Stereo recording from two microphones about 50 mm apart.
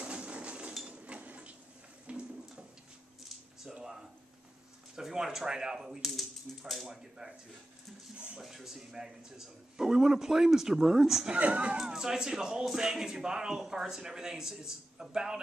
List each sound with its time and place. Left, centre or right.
0.0 s chink: right
0.8 s a sound: right
3.7 s a sound: centre
4.9 s a man's voice: centre
8.4 s a man's voice: centre
11.3 s speech: right
11.7 s a man's voice: centre